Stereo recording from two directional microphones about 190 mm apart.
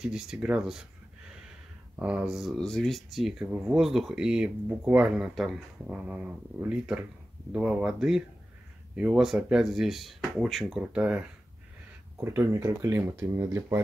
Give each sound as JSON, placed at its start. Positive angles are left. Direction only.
{"t": 0.0, "sound": "speech", "side_deg": -5}
{"t": 2.0, "sound": "speech", "side_deg": -5}